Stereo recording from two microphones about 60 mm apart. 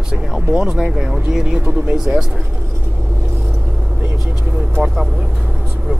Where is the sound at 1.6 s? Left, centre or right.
Right.